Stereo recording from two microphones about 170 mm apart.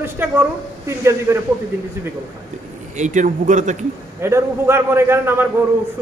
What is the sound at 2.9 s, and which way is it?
Speech, 45° right (ahead or behind).